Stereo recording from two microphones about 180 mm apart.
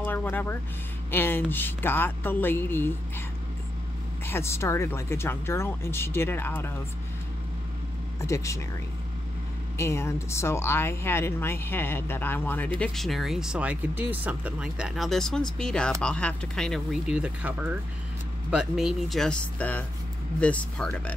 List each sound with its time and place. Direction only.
0.0 s speech: 10° left (ahead or behind)
4.3 s speech: 15° left (ahead or behind)
8.2 s speech: 15° left (ahead or behind)
9.8 s speech: 15° left (ahead or behind)